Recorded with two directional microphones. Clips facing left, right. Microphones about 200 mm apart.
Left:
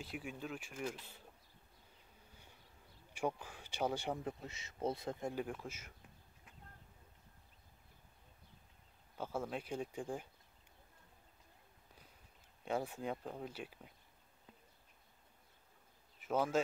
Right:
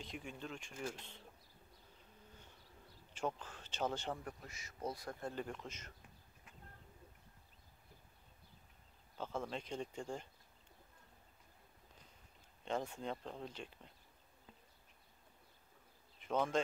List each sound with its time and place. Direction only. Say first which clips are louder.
0.0 s speech: left 2 dB; 5° left (ahead or behind)
3.1 s speech: left 2 dB; 10° left (ahead or behind)
4.2 s speech: left 6 dB; 20° left (ahead or behind)
5.3 s speech: left 3 dB; 10° left (ahead or behind)
9.1 s speech: left 2 dB; 10° left (ahead or behind)
12.6 s speech: left 2 dB; 10° left (ahead or behind)
16.2 s speech: left 1 dB; 5° left (ahead or behind)